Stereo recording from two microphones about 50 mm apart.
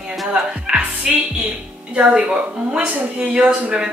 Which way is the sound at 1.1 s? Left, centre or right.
Centre.